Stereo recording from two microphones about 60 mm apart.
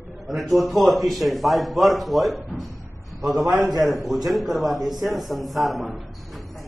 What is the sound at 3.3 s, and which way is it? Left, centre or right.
Speech, right.